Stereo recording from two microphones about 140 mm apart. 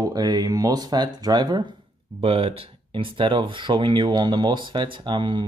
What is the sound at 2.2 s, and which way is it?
Speech, 45° right (ahead or behind).